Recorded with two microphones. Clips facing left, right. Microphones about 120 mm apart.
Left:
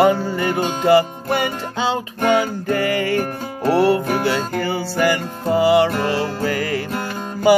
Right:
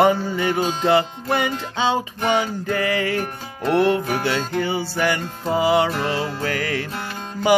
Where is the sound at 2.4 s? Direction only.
5° left (ahead or behind).